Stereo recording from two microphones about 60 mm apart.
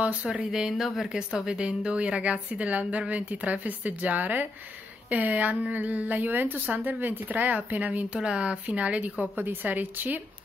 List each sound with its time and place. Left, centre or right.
0.0 s a woman's voice: right
0.5 s a woman's voice: centre
9.4 s speech: right